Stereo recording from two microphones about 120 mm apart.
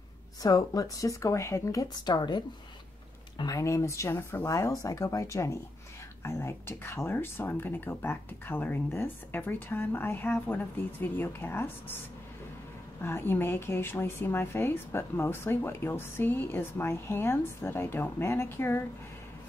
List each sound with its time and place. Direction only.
0.4 s speech: 30° left (ahead or behind)
13.0 s speech: 20° left (ahead or behind)